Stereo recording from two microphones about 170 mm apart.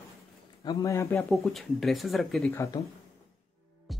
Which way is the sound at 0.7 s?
20° left (ahead or behind).